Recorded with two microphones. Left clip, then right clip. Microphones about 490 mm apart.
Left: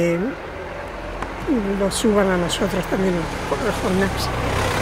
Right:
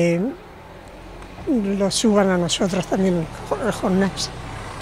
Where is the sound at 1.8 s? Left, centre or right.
Right.